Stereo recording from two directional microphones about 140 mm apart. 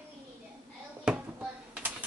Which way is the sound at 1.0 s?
5° right (ahead or behind).